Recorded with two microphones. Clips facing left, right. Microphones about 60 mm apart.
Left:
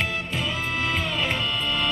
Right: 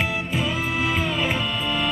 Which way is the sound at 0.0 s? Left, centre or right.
Centre.